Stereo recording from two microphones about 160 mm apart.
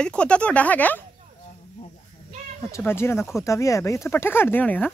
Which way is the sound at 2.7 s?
15° left (ahead or behind).